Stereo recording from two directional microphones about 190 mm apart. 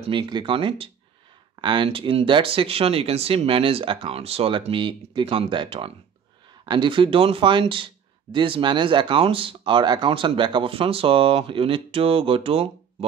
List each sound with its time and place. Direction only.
0.0 s speech: 25° right (ahead or behind)